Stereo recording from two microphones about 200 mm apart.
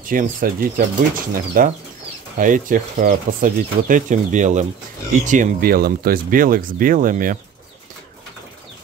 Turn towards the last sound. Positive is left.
turn(degrees=-45)  # may be behind; listen again after turning